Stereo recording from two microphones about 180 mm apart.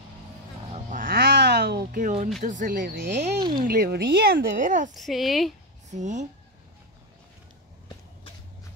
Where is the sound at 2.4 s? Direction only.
45° right (ahead or behind).